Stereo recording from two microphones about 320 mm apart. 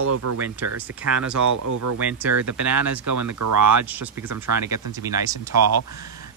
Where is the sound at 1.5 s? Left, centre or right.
Right.